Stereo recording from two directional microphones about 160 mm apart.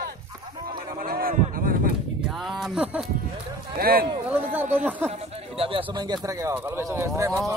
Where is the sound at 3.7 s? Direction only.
70° right (ahead or behind).